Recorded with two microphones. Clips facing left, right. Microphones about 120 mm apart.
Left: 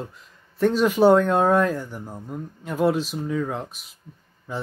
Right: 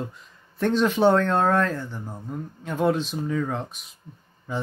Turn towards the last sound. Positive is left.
turn(degrees=0)  # may be behind; listen again after turning